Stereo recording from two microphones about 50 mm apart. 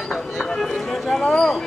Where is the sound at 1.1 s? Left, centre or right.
Left.